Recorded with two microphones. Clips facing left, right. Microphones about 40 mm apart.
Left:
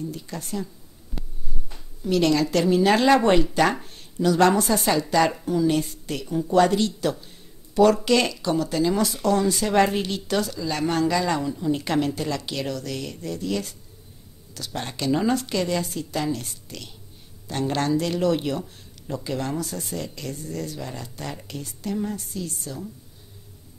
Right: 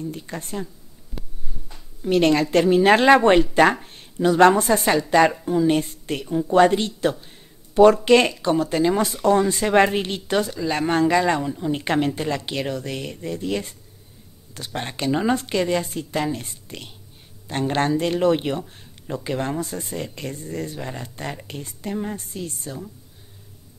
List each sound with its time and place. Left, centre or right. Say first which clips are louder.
0.0 s speech: right 2 dB; right
2.0 s a woman's voice: right 3 dB; right